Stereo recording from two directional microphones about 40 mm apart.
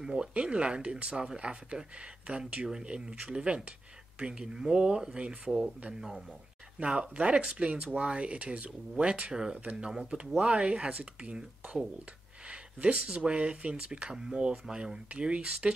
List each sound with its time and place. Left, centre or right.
0.0 s speech: centre
6.8 s speech: right
10.9 s speech: right
12.4 s speech: right